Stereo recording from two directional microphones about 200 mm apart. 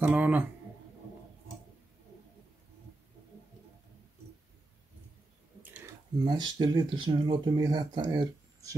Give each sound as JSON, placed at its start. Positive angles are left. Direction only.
{"t": 0.0, "sound": "speech", "side_deg": -10}
{"t": 5.6, "sound": "drip", "side_deg": -10}
{"t": 6.2, "sound": "speech", "side_deg": -20}